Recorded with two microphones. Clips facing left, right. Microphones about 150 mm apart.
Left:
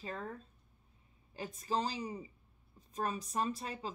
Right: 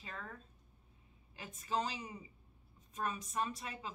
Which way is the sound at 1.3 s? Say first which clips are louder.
Left 2 dB; 35° left (ahead or behind).